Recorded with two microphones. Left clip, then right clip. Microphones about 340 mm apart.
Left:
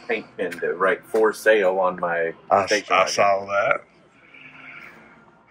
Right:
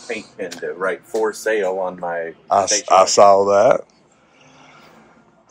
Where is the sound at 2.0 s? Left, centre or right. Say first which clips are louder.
Left 1 dB; left.